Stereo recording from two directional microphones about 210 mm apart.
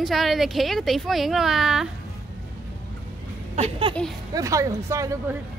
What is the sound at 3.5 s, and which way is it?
Speech, 30° right (ahead or behind).